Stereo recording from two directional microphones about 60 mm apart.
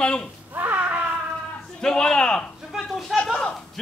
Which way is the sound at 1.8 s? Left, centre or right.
Centre.